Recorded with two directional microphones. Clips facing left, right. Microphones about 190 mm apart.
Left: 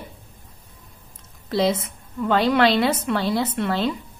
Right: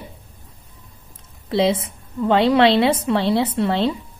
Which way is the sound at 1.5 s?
25° right (ahead or behind).